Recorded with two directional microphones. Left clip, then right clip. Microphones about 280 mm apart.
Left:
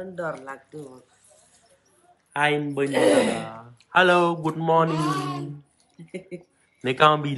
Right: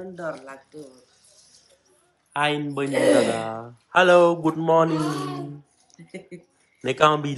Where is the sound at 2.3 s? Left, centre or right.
Centre.